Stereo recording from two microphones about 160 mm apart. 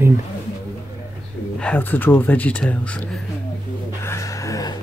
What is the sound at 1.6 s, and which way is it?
Speech, 10° left (ahead or behind).